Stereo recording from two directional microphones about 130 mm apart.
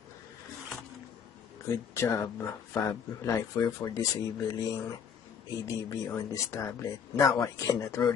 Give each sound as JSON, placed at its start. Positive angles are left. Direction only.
{"t": 1.7, "sound": "speech", "side_deg": 25}